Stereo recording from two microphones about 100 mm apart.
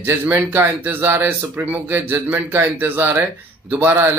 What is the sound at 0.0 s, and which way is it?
Speech, 20° right (ahead or behind).